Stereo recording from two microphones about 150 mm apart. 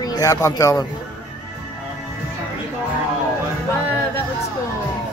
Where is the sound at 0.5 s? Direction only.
20° left (ahead or behind).